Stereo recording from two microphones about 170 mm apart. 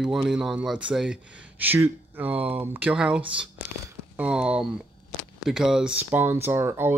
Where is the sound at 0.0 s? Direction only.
5° right (ahead or behind).